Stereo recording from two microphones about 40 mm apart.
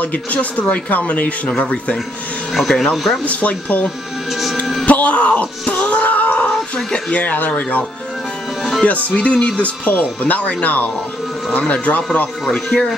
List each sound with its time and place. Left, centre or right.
0.0 s speech: left
2.7 s speech: centre
3.3 s speech: left
6.5 s speech: left
8.8 s speech: left
9.6 s speech: left
12.4 s speech: centre